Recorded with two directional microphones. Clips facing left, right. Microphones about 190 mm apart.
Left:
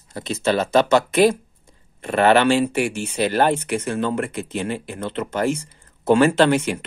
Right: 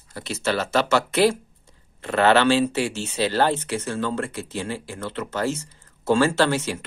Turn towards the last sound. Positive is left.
turn(degrees=20)  # may be behind; listen again after turning